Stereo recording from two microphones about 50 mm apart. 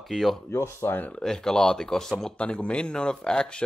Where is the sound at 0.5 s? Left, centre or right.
Left.